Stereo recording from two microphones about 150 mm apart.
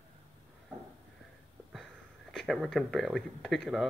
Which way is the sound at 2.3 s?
Centre (ahead or behind).